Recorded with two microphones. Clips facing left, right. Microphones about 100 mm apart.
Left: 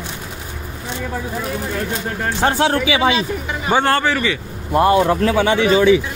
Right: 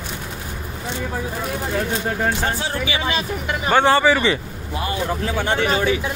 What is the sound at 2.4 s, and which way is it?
Speech, 80° left.